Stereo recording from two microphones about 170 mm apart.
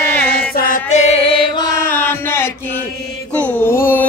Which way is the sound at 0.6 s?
50° left (ahead or behind).